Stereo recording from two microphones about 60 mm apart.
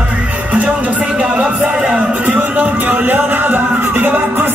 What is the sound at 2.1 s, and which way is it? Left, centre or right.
Music, right.